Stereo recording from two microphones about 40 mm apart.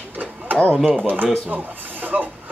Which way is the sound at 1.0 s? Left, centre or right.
Right.